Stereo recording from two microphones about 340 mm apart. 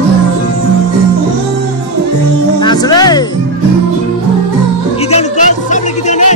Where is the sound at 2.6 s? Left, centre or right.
Centre.